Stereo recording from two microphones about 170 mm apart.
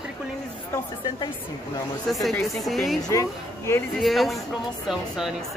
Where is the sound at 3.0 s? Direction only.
20° left (ahead or behind).